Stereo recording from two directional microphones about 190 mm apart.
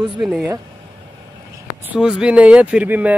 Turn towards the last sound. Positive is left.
turn(degrees=-10)  # may be behind; listen again after turning